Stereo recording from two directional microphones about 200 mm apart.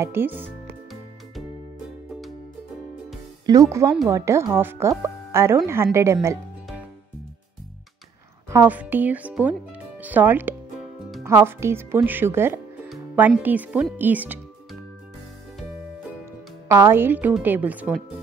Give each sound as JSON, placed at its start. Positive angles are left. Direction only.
{"t": 0.0, "sound": "speech", "side_deg": -10}
{"t": 3.4, "sound": "speech", "side_deg": -15}
{"t": 8.5, "sound": "speech", "side_deg": -10}
{"t": 16.6, "sound": "speech", "side_deg": -15}